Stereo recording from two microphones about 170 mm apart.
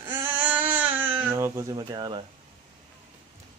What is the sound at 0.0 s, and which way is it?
Baby cry, 10° right (ahead or behind).